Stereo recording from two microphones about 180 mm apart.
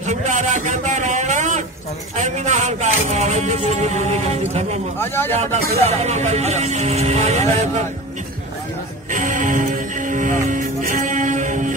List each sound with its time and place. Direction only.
0.0 s a sound: 40° right (ahead or behind)
2.1 s speech: 40° right (ahead or behind)
4.9 s a man's voice: 10° left (ahead or behind)
5.4 s speech: 35° right (ahead or behind)
9.1 s music: 45° right (ahead or behind)